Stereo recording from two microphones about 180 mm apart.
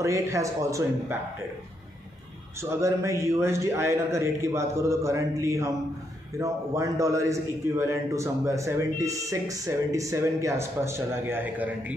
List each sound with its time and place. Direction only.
0.0 s a man's voice: 15° right (ahead or behind)
2.6 s a man's voice: 15° right (ahead or behind)